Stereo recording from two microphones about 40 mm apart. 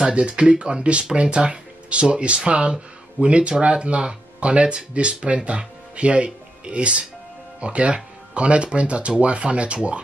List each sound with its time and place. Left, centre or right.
0.0 s speech: right